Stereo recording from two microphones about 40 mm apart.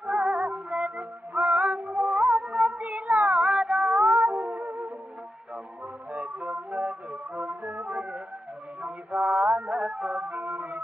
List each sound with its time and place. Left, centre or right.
0.0 s music: right
3.4 s music: right
4.0 s music: right
6.1 s music: right
7.6 s music: right
9.1 s mantra: right
9.7 s music: right
10.1 s music: right